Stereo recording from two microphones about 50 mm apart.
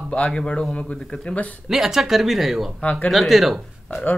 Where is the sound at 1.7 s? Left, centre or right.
Centre.